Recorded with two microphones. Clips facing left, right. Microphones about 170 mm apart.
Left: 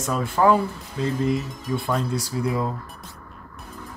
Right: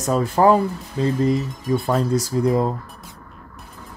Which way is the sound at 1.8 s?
40° right (ahead or behind).